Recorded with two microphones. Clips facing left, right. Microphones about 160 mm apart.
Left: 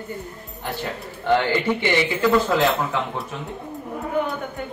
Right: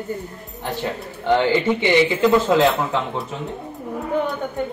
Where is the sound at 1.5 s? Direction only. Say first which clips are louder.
Right 3 dB; 15° right (ahead or behind).